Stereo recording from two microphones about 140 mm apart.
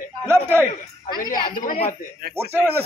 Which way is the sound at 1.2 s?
80° left.